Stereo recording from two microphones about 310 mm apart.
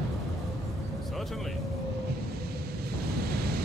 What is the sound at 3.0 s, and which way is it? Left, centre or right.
Waves, right.